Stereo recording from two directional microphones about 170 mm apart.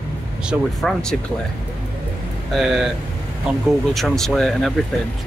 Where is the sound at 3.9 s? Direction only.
Centre (ahead or behind).